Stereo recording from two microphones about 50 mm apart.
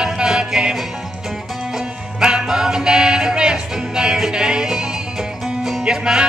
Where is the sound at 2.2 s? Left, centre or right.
Centre.